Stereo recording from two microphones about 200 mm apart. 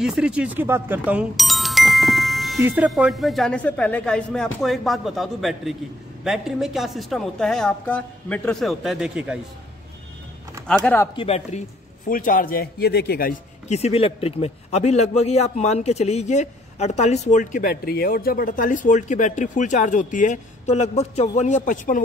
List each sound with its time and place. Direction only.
0.0 s speech: 5° right (ahead or behind)
10.7 s speech: 10° left (ahead or behind)
11.1 s a man's voice: 30° left (ahead or behind)
12.1 s a man's voice: 45° left (ahead or behind)
13.7 s a man's voice: 30° left (ahead or behind)